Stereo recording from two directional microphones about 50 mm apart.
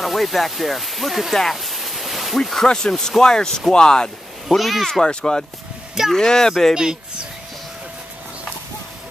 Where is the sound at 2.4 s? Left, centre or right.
Centre.